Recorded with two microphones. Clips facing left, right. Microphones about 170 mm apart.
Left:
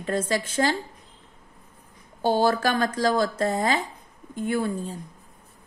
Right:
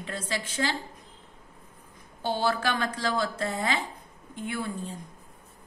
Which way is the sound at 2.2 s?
40° left (ahead or behind).